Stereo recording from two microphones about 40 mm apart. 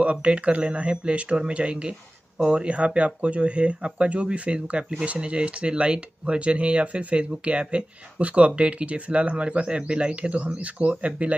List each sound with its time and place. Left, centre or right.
0.0 s speech: right